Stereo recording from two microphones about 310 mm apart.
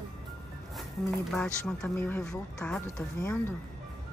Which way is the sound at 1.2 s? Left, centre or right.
Centre.